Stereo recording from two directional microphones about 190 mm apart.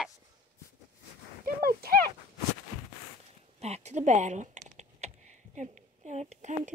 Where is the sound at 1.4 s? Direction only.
50° right (ahead or behind).